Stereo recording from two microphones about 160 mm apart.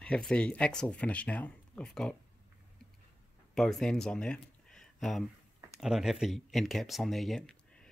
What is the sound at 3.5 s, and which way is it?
Speech, 5° left (ahead or behind).